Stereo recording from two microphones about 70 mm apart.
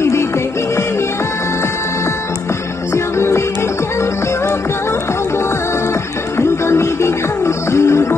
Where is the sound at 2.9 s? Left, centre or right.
Left.